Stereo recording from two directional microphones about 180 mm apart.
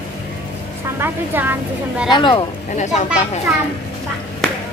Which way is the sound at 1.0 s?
10° right (ahead or behind).